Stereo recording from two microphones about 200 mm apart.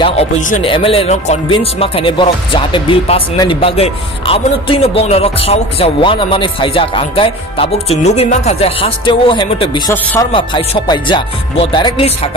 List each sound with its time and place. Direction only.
0.7 s speech: 25° left (ahead or behind)